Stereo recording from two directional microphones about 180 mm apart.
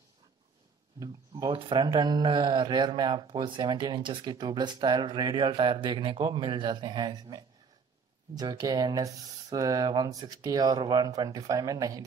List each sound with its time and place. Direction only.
0.9 s speech: 20° right (ahead or behind)